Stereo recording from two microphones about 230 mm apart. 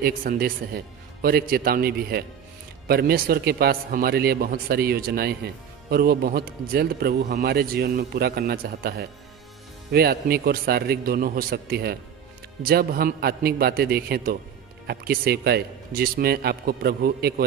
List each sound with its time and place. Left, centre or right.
0.0 s a man's voice: right
7.2 s speech: right
7.4 s a man's voice: right